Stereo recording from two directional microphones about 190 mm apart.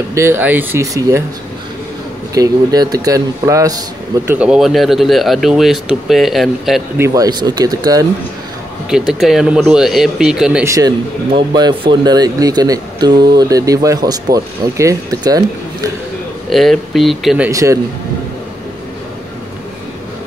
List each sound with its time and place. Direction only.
0.1 s speech: 10° right (ahead or behind)
2.3 s speech: 20° right (ahead or behind)
4.3 s speech: 5° right (ahead or behind)
7.0 s speech: 20° right (ahead or behind)
8.9 s speech: centre (ahead or behind)
10.6 s speech: 15° right (ahead or behind)
16.4 s speech: centre (ahead or behind)
17.5 s speech: 15° right (ahead or behind)